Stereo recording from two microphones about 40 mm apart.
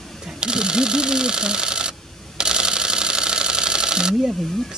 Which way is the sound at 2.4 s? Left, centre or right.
Centre.